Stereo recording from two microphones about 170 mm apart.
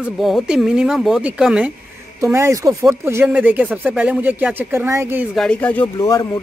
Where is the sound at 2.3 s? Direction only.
20° right (ahead or behind).